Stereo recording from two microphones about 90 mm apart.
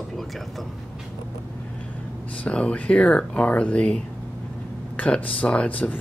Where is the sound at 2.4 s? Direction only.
15° left (ahead or behind).